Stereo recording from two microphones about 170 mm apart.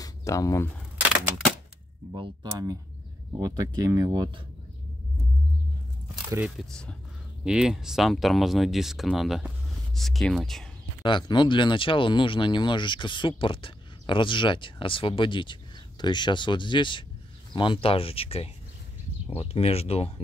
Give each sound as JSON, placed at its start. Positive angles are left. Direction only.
{"t": 0.0, "sound": "speech", "side_deg": 20}
{"t": 2.1, "sound": "speech", "side_deg": -20}
{"t": 6.4, "sound": "speech", "side_deg": 5}
{"t": 11.0, "sound": "speech", "side_deg": 25}